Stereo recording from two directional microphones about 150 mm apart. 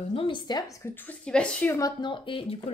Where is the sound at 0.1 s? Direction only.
35° left (ahead or behind).